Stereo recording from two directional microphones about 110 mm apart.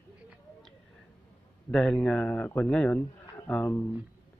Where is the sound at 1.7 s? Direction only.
10° left (ahead or behind).